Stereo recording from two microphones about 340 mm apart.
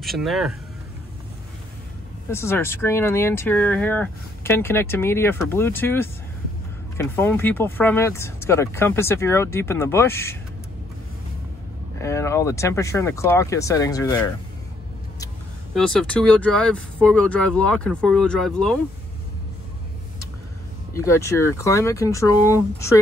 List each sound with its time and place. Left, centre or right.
0.0 s speech: centre
2.2 s speech: centre
12.0 s speech: centre
15.7 s speech: centre
20.9 s speech: centre